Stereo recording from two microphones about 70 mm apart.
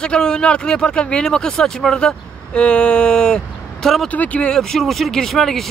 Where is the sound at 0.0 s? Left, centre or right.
Centre.